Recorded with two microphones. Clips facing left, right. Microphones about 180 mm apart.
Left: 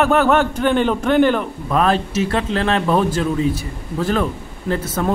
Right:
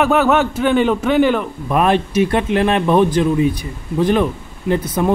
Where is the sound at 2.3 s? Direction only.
20° right (ahead or behind).